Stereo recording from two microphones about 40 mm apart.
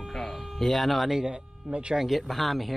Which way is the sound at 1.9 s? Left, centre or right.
Centre.